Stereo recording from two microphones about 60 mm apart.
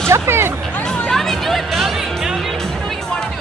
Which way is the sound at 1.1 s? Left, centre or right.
Centre.